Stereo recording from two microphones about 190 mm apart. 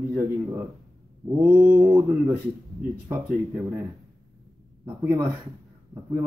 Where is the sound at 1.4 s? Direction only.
5° right (ahead or behind).